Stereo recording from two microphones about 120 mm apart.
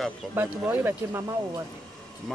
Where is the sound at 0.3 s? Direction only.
15° right (ahead or behind).